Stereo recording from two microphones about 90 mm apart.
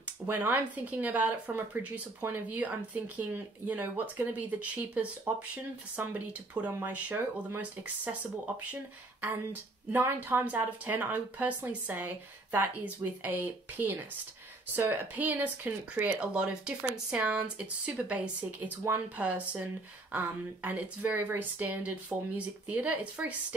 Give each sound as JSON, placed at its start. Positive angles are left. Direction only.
{"t": 0.0, "sound": "speech", "side_deg": -20}
{"t": 9.2, "sound": "speech", "side_deg": -25}